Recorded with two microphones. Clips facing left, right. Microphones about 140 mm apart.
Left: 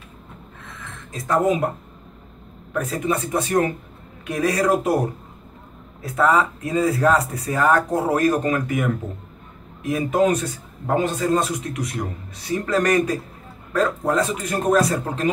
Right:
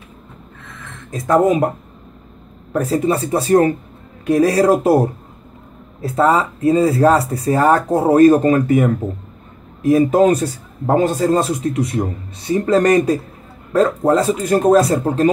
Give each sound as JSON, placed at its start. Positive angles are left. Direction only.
{"t": 1.1, "sound": "speech", "side_deg": -50}
{"t": 2.7, "sound": "a man's voice", "side_deg": -35}
{"t": 6.0, "sound": "a man's voice", "side_deg": -30}